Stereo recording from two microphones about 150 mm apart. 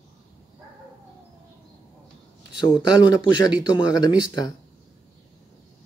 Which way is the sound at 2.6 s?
35° left (ahead or behind).